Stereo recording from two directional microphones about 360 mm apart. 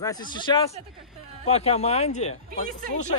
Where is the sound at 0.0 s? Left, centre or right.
Centre.